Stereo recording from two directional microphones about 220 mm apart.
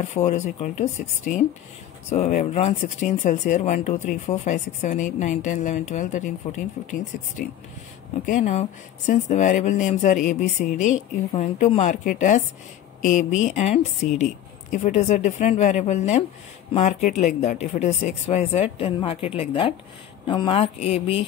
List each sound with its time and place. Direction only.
0.0 s speech: 30° left (ahead or behind)
8.3 s a woman's voice: 35° left (ahead or behind)